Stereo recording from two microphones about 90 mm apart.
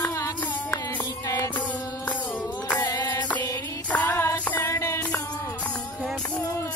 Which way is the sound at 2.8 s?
50° left (ahead or behind).